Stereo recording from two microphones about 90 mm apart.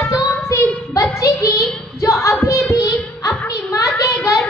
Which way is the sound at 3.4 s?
35° left (ahead or behind).